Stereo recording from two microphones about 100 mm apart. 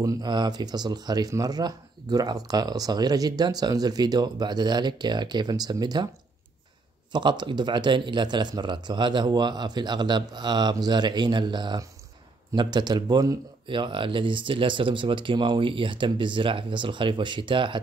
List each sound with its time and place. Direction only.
0.0 s speech: 40° right (ahead or behind)
7.1 s speech: 50° right (ahead or behind)
13.7 s speech: 55° right (ahead or behind)